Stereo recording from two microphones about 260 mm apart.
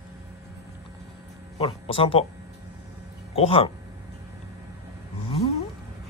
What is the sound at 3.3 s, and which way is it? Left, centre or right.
Speech, left.